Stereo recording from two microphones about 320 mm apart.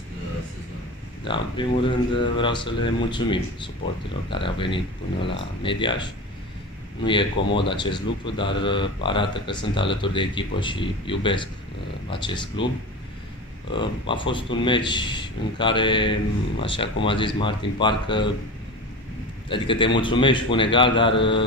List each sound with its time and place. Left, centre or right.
1.2 s speech: centre
7.5 s speech: centre
13.7 s speech: centre
19.5 s speech: centre